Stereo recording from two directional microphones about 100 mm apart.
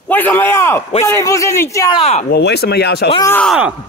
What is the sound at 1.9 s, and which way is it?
Speech, 90° left.